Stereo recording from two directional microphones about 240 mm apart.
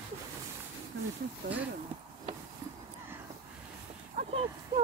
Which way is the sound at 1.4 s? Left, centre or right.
Right.